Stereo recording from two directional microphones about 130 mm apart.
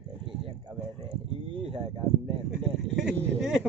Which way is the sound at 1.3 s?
45° right (ahead or behind).